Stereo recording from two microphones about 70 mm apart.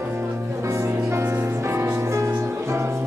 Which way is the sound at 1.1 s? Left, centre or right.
Right.